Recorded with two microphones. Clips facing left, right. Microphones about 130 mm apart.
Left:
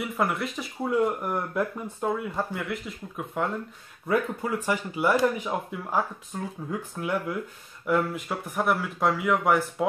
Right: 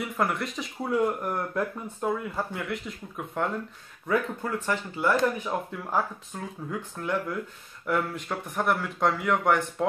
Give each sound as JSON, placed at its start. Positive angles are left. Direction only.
{"t": 0.0, "sound": "speech", "side_deg": 0}
{"t": 2.3, "sound": "speech", "side_deg": 0}